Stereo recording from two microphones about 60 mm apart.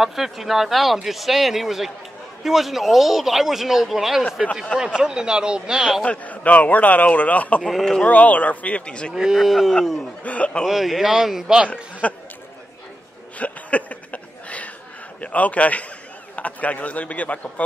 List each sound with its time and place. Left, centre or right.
0.0 s speech: centre
6.0 s a man's voice: left
7.6 s speech: centre
8.1 s a man's voice: left
9.1 s speech: centre
10.2 s a man's voice: left
10.6 s speech: centre
12.0 s a man's voice: left
13.4 s a sound: left
15.1 s a man's voice: left